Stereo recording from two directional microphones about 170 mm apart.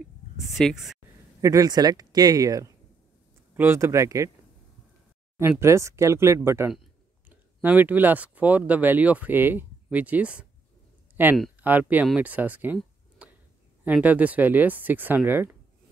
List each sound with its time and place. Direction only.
0.4 s speech: centre (ahead or behind)
1.4 s speech: 20° right (ahead or behind)
5.4 s speech: 15° right (ahead or behind)
6.7 s speech: 5° right (ahead or behind)
13.2 s a sound: 5° right (ahead or behind)
13.8 s speech: 10° right (ahead or behind)